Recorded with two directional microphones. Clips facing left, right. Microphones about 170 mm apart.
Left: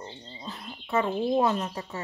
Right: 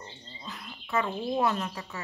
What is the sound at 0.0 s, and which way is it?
Speech, 20° left (ahead or behind).